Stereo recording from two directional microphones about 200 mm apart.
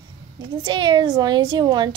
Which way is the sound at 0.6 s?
20° right (ahead or behind).